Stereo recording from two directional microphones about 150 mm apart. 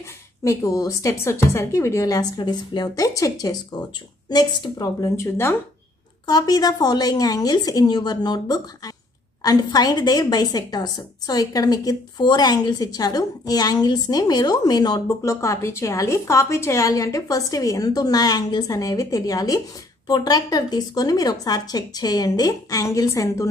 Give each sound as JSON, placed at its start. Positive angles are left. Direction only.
{"t": 0.4, "sound": "a woman's voice", "side_deg": 20}